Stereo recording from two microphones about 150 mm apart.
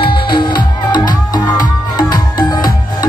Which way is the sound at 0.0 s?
90° left.